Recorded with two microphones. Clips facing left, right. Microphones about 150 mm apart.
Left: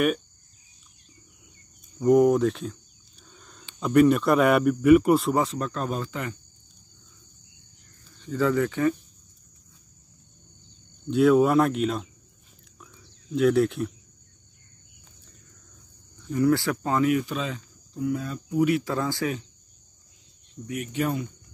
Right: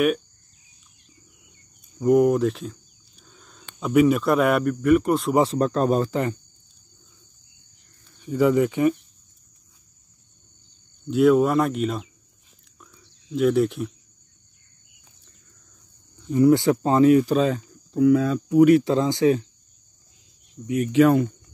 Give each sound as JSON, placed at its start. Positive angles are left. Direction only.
{"t": 2.0, "sound": "a sound", "side_deg": 0}
{"t": 3.8, "sound": "a man's voice", "side_deg": -5}
{"t": 5.4, "sound": "speech", "side_deg": -35}
{"t": 8.2, "sound": "speech", "side_deg": -15}
{"t": 11.1, "sound": "a man's voice", "side_deg": 0}
{"t": 12.7, "sound": "a sound", "side_deg": 0}
{"t": 16.3, "sound": "speech", "side_deg": -20}
{"t": 17.9, "sound": "speech", "side_deg": -90}
{"t": 18.9, "sound": "speech", "side_deg": -20}
{"t": 20.6, "sound": "a man's voice", "side_deg": 0}
{"t": 20.9, "sound": "speech", "side_deg": -90}